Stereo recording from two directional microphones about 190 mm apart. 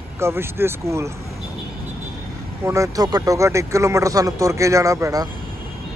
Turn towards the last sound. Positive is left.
turn(degrees=-15)  # may be behind; listen again after turning